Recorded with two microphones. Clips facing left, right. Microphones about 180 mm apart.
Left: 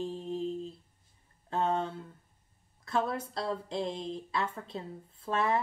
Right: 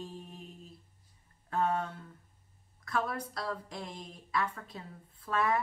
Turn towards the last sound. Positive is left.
turn(degrees=25)  # may be behind; listen again after turning